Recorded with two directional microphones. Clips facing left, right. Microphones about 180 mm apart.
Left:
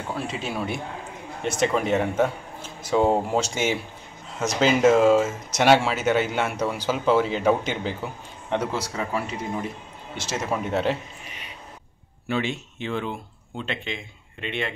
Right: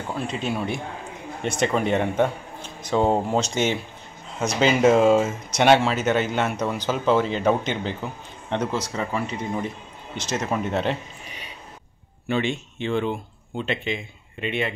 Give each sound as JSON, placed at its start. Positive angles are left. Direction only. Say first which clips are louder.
{"t": 0.1, "sound": "speech", "louder": "right 3 dB", "side_deg": 0}
{"t": 12.3, "sound": "speech", "louder": "right 2 dB", "side_deg": 5}